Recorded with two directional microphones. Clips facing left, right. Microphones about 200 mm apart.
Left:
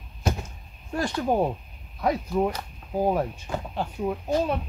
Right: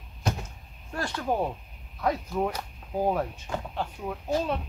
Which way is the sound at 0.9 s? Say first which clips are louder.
Left 5 dB; 15° left (ahead or behind).